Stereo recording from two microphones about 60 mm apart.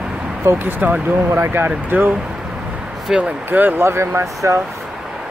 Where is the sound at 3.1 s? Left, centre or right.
Right.